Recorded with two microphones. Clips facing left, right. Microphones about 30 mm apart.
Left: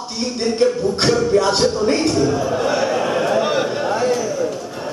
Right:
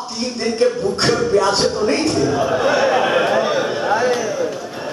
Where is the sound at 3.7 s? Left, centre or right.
Right.